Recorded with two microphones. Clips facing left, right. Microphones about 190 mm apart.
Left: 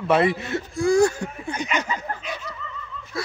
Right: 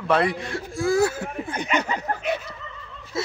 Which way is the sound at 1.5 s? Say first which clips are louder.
Right 2 dB; 55° right (ahead or behind).